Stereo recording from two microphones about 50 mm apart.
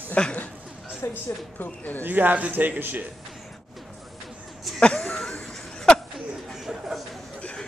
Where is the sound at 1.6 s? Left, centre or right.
Left.